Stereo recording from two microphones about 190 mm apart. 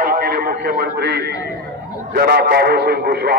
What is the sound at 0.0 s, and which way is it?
Radio, 50° right (ahead or behind).